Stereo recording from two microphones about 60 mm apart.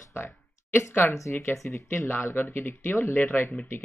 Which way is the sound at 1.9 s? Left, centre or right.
Left.